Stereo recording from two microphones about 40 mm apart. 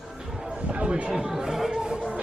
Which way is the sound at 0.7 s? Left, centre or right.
Right.